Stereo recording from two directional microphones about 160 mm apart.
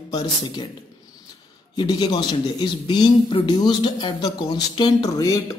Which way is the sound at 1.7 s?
25° left (ahead or behind).